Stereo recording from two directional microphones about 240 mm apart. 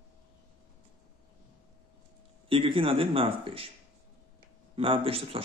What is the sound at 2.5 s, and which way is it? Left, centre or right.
Speech, right.